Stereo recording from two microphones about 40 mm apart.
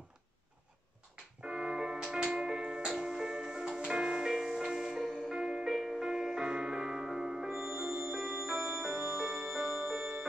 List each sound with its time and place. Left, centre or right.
1.4 s music: centre